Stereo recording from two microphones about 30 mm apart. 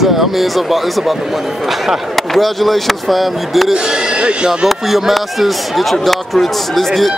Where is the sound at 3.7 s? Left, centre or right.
Right.